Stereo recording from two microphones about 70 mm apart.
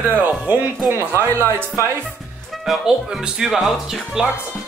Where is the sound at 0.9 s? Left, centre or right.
Right.